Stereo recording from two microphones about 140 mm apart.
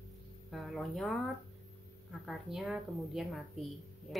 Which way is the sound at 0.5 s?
Centre (ahead or behind).